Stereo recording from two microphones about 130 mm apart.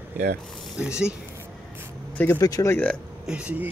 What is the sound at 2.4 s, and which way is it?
Speech, 30° left (ahead or behind).